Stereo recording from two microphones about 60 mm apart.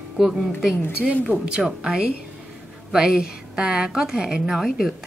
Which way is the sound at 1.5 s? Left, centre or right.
Centre.